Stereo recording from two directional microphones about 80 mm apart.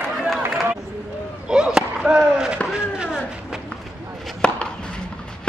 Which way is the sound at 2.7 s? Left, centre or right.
Centre.